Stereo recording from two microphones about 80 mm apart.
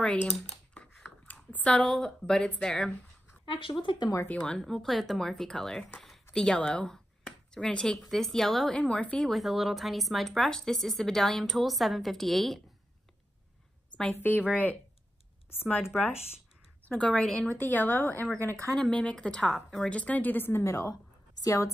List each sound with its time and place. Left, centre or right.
1.0 s speech: left
3.4 s speech: left
3.8 s speech: left
4.3 s a woman's voice: centre
5.9 s a sound: centre
6.3 s speech: centre
8.7 s a woman's voice: centre
9.3 s a woman's voice: centre
14.1 s speech: left
15.9 s a woman's voice: centre
18.8 s a woman's voice: centre
20.0 s speech: centre
20.6 s a woman's voice: left